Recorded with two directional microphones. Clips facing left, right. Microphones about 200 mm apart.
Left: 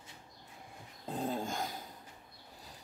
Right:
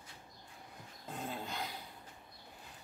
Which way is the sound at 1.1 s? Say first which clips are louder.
Left 6 dB; 40° left (ahead or behind).